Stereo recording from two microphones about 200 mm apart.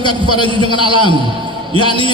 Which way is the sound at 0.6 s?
25° left (ahead or behind).